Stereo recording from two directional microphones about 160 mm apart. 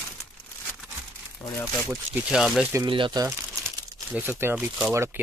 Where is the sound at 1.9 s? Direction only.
10° right (ahead or behind).